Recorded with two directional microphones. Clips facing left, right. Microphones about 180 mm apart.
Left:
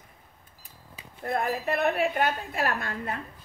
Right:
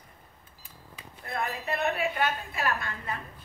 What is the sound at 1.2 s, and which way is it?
A woman's voice, 45° left (ahead or behind).